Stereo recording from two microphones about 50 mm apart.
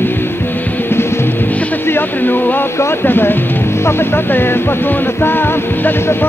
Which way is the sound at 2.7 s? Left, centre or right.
Left.